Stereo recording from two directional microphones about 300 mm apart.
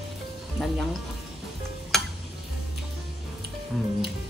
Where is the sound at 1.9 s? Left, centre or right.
Centre.